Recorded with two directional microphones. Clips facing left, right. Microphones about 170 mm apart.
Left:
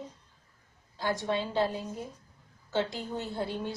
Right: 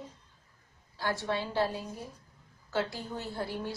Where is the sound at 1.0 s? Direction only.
20° left (ahead or behind).